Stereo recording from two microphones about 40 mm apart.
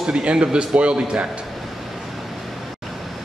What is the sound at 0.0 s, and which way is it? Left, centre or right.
A man's voice, right.